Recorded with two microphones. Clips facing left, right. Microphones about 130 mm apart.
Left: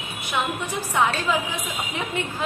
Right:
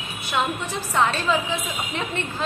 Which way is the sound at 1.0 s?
10° left (ahead or behind).